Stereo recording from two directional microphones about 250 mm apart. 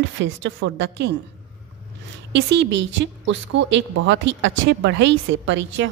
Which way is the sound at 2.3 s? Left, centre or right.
Right.